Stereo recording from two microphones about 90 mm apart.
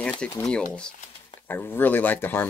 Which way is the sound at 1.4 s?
25° left (ahead or behind).